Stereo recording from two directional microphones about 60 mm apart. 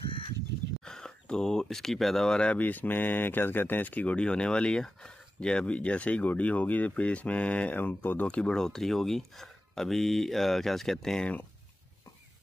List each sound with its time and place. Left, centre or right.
0.8 s speech: centre
2.5 s speech: left
7.7 s speech: left
8.3 s speech: centre